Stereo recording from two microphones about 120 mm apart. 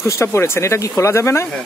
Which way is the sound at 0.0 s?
25° left (ahead or behind).